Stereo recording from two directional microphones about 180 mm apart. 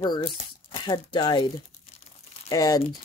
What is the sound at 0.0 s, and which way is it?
Speech, 25° left (ahead or behind).